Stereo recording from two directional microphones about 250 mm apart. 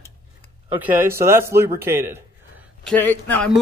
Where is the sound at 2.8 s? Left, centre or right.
Centre.